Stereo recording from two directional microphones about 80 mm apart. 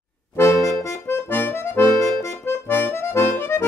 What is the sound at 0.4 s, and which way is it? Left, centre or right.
Accordion, left.